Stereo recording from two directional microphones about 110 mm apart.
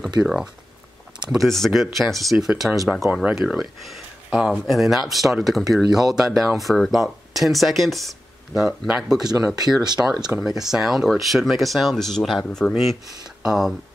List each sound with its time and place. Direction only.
0.2 s speech: 5° right (ahead or behind)
9.8 s speech: 35° right (ahead or behind)
10.4 s speech: 5° right (ahead or behind)